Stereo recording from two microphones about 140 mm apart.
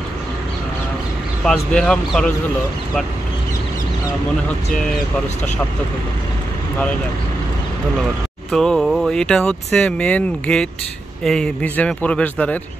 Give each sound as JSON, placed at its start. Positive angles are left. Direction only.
{"t": 1.4, "sound": "speech", "side_deg": 5}
{"t": 8.5, "sound": "speech", "side_deg": 5}